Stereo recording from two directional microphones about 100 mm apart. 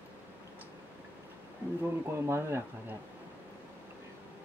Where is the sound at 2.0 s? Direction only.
25° right (ahead or behind).